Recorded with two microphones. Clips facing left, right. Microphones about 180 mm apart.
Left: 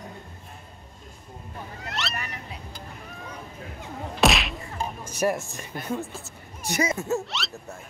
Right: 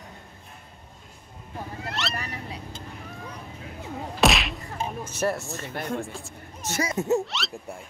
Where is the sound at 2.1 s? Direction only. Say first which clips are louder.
Right 2 dB; 30° right (ahead or behind).